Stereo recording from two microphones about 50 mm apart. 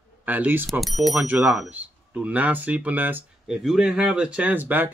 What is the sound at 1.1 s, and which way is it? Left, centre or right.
Speech, right.